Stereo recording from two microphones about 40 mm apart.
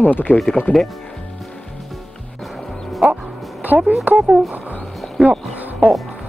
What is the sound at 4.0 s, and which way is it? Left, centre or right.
Speech, right.